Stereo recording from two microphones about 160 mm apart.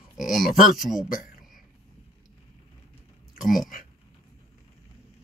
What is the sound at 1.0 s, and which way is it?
Speech, 60° left (ahead or behind).